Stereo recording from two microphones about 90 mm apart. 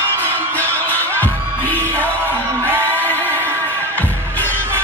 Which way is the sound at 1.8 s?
25° right (ahead or behind).